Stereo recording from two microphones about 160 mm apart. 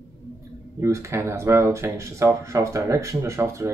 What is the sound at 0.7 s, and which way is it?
Speech, 15° right (ahead or behind).